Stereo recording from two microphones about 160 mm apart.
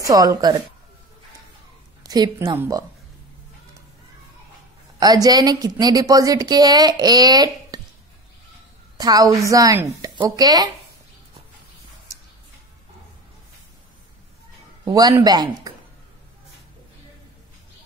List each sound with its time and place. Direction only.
0.0 s a woman's voice: 20° right (ahead or behind)
2.0 s a woman's voice: 25° right (ahead or behind)
5.0 s a woman's voice: 25° right (ahead or behind)
8.9 s a woman's voice: 25° right (ahead or behind)
14.9 s a woman's voice: 25° right (ahead or behind)